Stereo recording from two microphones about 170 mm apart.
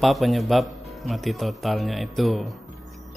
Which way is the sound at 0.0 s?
Centre (ahead or behind).